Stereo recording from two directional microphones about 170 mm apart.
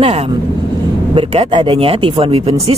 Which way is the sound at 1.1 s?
35° right (ahead or behind).